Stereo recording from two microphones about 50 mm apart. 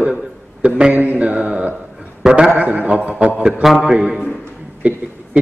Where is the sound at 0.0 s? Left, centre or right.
Right.